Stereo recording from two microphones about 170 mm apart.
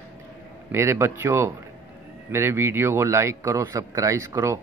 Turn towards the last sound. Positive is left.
turn(degrees=-15)  # may be behind; listen again after turning